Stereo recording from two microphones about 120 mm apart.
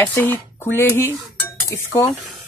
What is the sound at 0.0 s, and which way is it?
A woman's voice, 15° left (ahead or behind).